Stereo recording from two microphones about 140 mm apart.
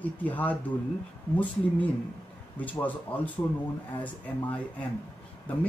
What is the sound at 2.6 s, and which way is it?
Speech, 10° left (ahead or behind).